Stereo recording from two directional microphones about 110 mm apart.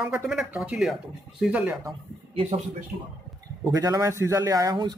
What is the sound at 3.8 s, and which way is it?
Speech, 30° right (ahead or behind).